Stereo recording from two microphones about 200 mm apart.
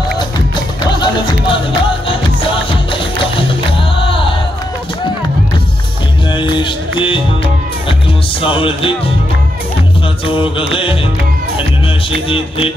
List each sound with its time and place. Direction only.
0.9 s music: 25° left (ahead or behind)
6.3 s music: 25° left (ahead or behind)
8.4 s music: 25° left (ahead or behind)
10.2 s music: 25° left (ahead or behind)
12.3 s music: 25° left (ahead or behind)